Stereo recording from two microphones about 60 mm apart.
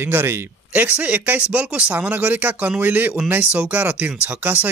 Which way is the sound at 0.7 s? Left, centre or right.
Right.